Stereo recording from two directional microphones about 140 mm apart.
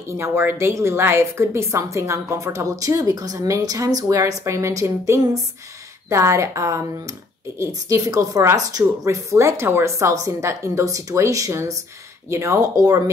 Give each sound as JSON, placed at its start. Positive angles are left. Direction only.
{"t": 0.2, "sound": "a woman's voice", "side_deg": -15}